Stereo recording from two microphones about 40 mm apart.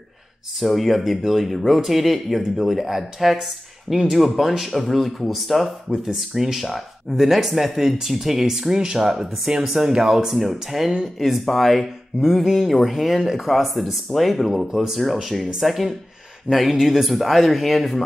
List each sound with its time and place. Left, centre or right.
0.6 s speech: centre
6.0 s speech: centre